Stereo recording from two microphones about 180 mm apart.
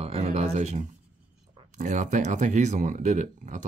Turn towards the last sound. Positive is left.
turn(degrees=-40)  # may be behind; listen again after turning